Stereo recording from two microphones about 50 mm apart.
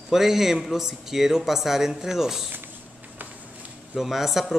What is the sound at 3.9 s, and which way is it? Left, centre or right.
Speech, centre.